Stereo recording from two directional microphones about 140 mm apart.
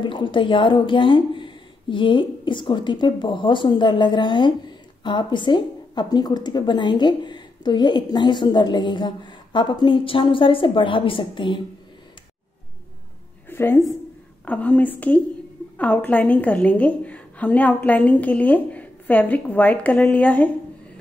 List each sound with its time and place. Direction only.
0.0 s speech: 35° left (ahead or behind)
13.5 s a sound: 15° left (ahead or behind)
14.4 s a woman's voice: 10° left (ahead or behind)